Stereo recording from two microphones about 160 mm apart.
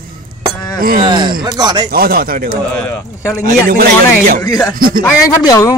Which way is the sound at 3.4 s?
65° right (ahead or behind).